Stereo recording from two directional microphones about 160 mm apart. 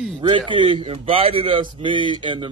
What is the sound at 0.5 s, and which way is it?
Speech, 30° right (ahead or behind).